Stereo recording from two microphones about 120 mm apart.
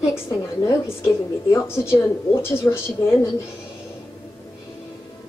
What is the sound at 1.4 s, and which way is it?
Speech, 20° left (ahead or behind).